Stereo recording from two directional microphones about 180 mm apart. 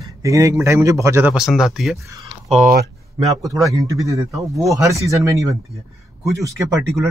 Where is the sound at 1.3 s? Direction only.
5° right (ahead or behind).